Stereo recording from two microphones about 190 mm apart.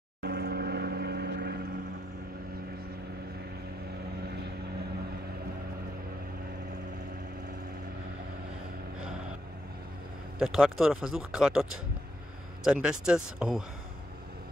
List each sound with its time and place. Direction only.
0.2 s vehicle: 55° right (ahead or behind)
10.4 s speech: centre (ahead or behind)
12.6 s speech: 5° right (ahead or behind)